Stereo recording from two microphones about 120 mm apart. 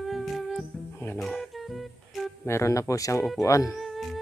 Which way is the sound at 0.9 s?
20° left (ahead or behind).